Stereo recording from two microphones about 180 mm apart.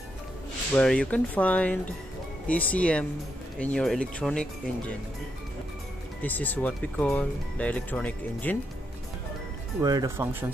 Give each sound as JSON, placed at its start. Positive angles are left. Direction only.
{"t": 0.7, "sound": "speech", "side_deg": 5}
{"t": 6.2, "sound": "speech", "side_deg": 10}
{"t": 9.8, "sound": "speech", "side_deg": -20}